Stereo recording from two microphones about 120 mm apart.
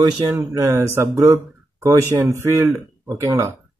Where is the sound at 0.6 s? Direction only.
25° right (ahead or behind).